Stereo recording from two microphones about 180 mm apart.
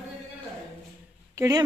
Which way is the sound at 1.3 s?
20° right (ahead or behind).